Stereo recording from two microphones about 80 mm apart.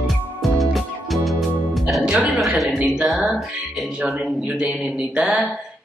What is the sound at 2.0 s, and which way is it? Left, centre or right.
Music, centre.